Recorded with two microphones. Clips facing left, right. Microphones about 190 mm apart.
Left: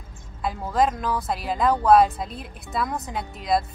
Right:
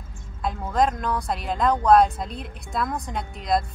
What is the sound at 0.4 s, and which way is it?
Speech, 5° left (ahead or behind).